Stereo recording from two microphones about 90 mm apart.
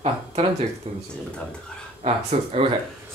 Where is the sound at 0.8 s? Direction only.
90° right.